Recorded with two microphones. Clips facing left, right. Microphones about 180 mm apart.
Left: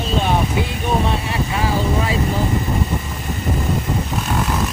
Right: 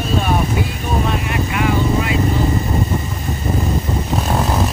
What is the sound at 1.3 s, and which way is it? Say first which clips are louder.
Vehicle: right 2 dB; 30° left (ahead or behind).